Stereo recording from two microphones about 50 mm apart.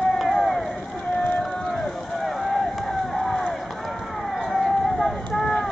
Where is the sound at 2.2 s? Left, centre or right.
Centre.